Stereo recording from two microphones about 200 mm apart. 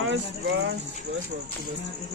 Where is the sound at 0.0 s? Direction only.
70° right (ahead or behind).